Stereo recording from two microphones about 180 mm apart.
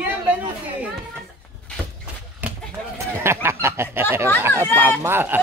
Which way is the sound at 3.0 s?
15° right (ahead or behind).